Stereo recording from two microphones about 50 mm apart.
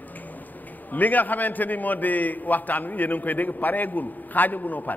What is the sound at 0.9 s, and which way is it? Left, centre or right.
A man's voice, left.